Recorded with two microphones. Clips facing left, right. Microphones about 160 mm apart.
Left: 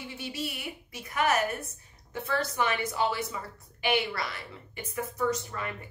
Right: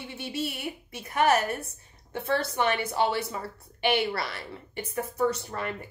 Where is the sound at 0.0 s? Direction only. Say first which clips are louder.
Right 3 dB; 25° right (ahead or behind).